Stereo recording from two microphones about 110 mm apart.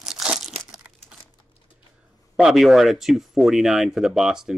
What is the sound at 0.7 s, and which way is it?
Crumpling, 10° right (ahead or behind).